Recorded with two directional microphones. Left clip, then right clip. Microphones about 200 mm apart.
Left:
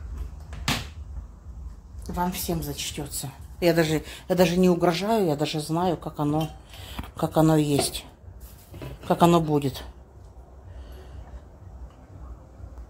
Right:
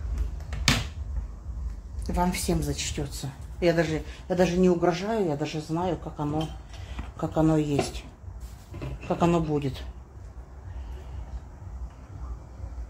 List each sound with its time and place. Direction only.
2.0 s a woman's voice: centre (ahead or behind)
3.5 s speech: 55° left (ahead or behind)
9.0 s speech: 40° left (ahead or behind)